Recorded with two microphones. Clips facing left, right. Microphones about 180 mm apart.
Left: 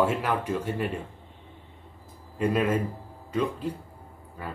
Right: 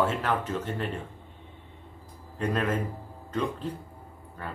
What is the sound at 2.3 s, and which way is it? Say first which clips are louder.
A man's voice: left 3 dB; 10° left (ahead or behind).